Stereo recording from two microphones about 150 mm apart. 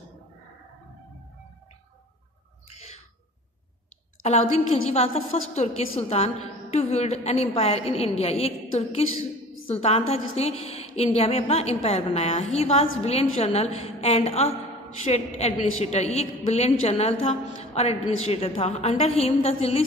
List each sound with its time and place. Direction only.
2.7 s bird: 45° left (ahead or behind)
4.2 s a woman's voice: 45° left (ahead or behind)